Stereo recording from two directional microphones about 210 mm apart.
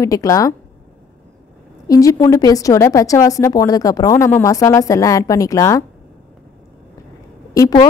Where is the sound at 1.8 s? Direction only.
15° left (ahead or behind).